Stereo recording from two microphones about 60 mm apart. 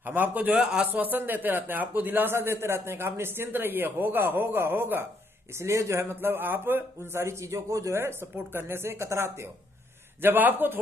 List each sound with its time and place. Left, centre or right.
0.0 s a man's voice: right
0.6 s speech: centre
1.1 s speech: right
5.5 s speech: right
6.1 s speech: right
7.9 s speech: right
10.2 s speech: right